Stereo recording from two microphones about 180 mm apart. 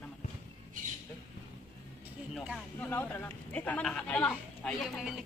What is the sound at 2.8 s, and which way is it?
Speech, 10° left (ahead or behind).